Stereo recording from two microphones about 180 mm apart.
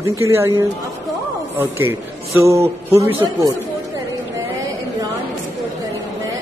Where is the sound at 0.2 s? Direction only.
15° right (ahead or behind).